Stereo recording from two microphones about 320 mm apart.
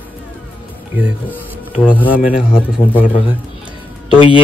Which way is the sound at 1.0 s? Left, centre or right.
Centre.